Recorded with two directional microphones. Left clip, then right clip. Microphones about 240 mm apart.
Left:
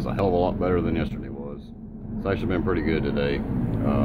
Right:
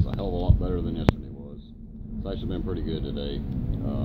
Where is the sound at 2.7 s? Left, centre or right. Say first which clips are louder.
Left 8 dB; left.